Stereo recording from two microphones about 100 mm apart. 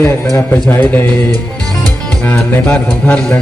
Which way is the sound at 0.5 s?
20° left (ahead or behind).